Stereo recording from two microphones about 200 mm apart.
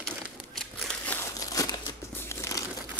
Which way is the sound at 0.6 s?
5° left (ahead or behind).